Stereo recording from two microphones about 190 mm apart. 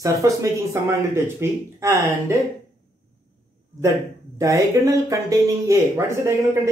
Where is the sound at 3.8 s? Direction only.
15° right (ahead or behind).